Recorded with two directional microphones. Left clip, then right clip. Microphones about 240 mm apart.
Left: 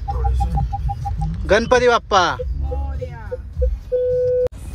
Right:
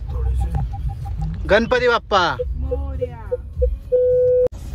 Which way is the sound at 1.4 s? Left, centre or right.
Centre.